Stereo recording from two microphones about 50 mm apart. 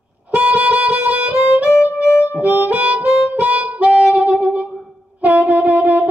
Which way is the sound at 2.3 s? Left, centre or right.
Right.